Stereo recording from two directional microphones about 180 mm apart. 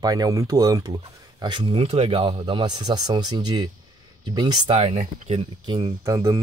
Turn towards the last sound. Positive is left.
turn(degrees=-15)  # may be behind; listen again after turning